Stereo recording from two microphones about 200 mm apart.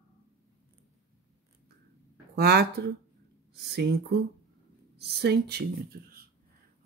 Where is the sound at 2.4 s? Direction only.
55° right (ahead or behind).